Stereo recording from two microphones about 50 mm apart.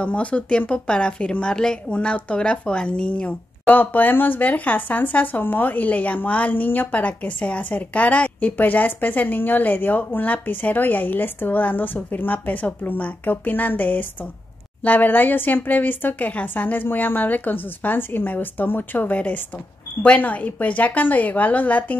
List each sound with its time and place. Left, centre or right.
0.0 s a woman's voice: left
1.9 s speech: left